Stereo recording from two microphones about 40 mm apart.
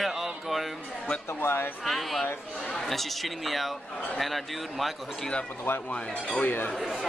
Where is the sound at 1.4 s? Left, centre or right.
Left.